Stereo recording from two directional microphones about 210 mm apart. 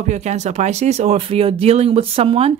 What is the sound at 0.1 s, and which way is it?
Speech, 35° right (ahead or behind).